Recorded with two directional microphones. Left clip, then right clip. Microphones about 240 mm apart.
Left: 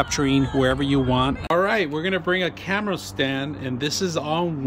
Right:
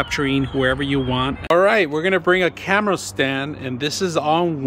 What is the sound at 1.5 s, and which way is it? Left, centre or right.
Speech, centre.